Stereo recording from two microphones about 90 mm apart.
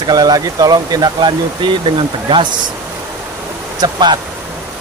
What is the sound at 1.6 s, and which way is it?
Speech, 65° right (ahead or behind).